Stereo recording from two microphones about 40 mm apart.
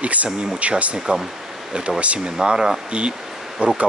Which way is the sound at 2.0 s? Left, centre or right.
Right.